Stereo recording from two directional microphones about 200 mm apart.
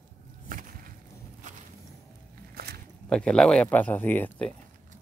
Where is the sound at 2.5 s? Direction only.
50° right (ahead or behind).